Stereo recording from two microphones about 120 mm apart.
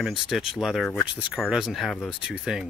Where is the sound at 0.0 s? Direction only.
5° right (ahead or behind).